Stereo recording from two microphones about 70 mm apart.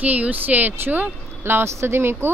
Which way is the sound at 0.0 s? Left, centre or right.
Right.